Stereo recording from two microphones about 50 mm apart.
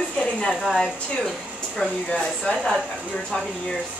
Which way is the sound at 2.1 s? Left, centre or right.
Centre.